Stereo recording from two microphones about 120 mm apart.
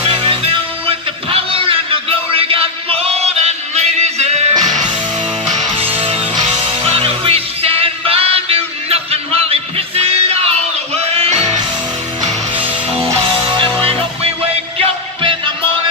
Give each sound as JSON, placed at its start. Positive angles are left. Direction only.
{"t": 0.0, "sound": "music", "side_deg": -50}
{"t": 4.6, "sound": "music", "side_deg": -35}
{"t": 5.8, "sound": "music", "side_deg": -50}
{"t": 13.6, "sound": "music", "side_deg": -55}